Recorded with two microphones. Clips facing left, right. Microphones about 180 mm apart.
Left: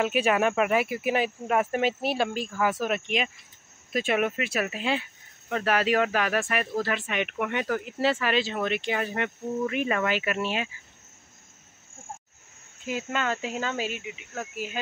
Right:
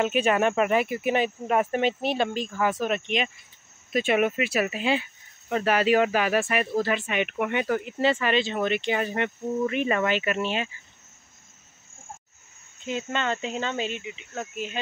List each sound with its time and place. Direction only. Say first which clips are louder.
0.0 s speech: right 1 dB; 5° left (ahead or behind)
12.8 s speech: right 1 dB; 5° left (ahead or behind)